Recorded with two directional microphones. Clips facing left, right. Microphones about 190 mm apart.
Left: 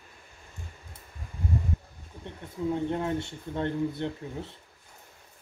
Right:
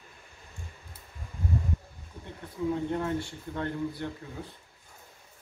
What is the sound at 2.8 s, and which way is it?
Speech, 20° left (ahead or behind).